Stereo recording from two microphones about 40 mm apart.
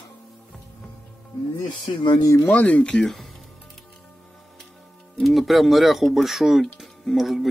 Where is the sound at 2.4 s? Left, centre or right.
Left.